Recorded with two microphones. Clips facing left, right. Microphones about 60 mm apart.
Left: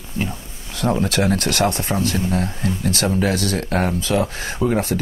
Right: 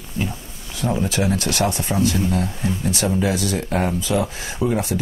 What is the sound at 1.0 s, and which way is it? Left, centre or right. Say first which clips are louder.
Speech: left 2 dB; left.